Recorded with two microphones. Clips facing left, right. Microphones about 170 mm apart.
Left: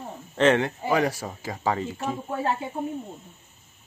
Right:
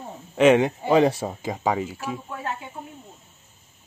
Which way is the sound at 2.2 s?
30° left (ahead or behind).